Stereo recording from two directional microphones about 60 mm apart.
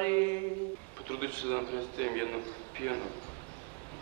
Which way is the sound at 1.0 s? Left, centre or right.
Left.